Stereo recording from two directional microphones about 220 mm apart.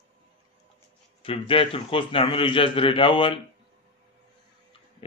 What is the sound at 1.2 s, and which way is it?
A man's voice, 25° left (ahead or behind).